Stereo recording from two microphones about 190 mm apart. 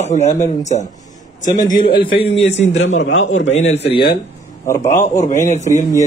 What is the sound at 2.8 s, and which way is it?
Speech, 90° left.